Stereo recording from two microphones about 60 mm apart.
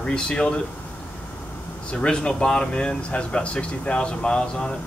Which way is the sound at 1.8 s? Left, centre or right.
Centre.